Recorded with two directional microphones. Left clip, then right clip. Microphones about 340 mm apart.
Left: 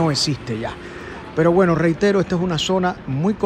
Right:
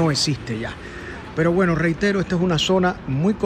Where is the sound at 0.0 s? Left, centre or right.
Centre.